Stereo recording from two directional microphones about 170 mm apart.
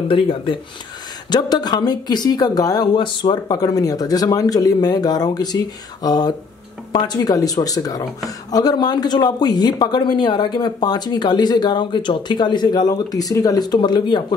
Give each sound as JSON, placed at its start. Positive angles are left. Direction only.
{"t": 0.1, "sound": "speech", "side_deg": 30}